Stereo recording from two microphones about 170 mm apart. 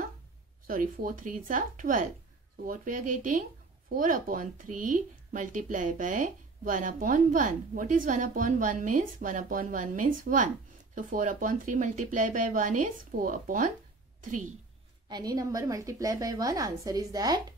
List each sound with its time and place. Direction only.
0.7 s speech: 55° right (ahead or behind)
15.0 s a woman's voice: 25° right (ahead or behind)